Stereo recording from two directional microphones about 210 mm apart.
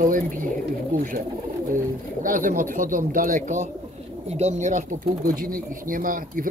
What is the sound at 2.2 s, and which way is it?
Speech, 40° right (ahead or behind).